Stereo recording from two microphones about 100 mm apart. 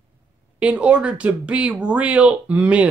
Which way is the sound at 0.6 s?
15° right (ahead or behind).